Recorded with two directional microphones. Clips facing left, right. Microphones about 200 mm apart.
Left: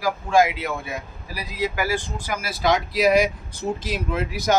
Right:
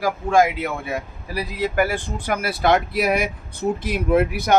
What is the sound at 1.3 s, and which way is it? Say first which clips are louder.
Speech: right 5 dB; 60° right (ahead or behind).